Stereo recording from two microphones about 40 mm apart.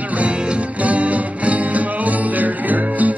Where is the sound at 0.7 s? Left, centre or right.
Right.